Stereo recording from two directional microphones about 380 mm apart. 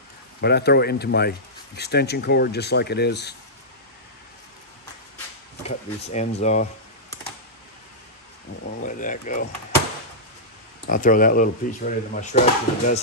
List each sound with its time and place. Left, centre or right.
0.4 s speech: left
5.6 s speech: centre
8.8 s speech: centre
10.9 s speech: left